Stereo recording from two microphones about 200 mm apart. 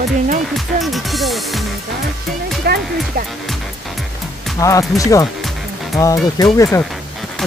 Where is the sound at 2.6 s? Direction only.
55° right (ahead or behind).